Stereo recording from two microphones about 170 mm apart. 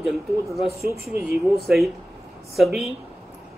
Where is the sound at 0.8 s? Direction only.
65° right (ahead or behind).